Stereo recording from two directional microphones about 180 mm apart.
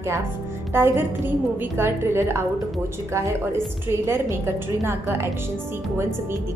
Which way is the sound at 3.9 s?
15° right (ahead or behind).